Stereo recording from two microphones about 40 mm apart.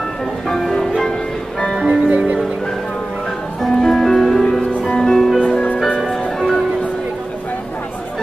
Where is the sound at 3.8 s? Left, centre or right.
Centre.